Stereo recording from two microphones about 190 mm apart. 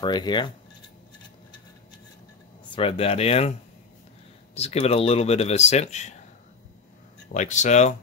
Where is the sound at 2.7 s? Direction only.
30° left (ahead or behind).